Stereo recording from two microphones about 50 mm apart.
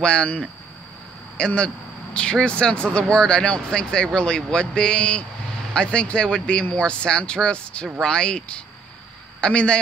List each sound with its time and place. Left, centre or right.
0.0 s speech: centre
1.4 s speech: left